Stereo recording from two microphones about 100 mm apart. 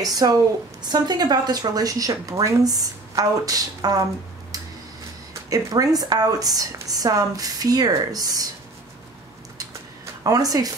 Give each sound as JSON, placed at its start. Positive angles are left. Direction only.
{"t": 0.0, "sound": "speech", "side_deg": -40}
{"t": 5.3, "sound": "speech", "side_deg": -35}
{"t": 10.2, "sound": "speech", "side_deg": -35}